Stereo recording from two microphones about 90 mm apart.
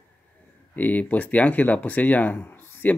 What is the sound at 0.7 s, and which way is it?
Speech, 20° left (ahead or behind).